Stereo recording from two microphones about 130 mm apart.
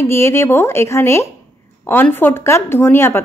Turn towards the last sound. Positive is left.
turn(degrees=20)  # may be behind; listen again after turning